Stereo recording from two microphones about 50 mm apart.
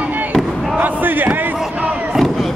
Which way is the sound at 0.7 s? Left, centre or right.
Right.